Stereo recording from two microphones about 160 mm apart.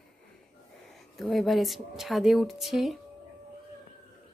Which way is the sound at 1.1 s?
Centre (ahead or behind).